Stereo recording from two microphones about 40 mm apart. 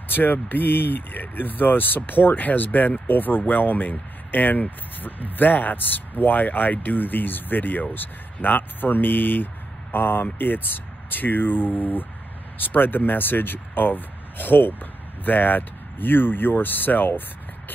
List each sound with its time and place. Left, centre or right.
0.1 s speech: left